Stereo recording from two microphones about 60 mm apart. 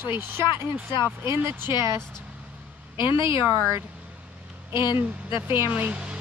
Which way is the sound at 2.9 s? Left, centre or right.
Right.